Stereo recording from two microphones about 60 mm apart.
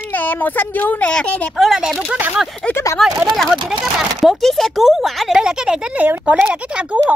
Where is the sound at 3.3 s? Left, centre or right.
Centre.